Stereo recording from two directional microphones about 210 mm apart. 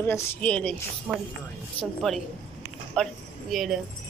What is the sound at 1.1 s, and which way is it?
Speech, 5° right (ahead or behind).